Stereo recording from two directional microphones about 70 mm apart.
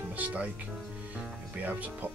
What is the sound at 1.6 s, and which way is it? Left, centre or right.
Speech, right.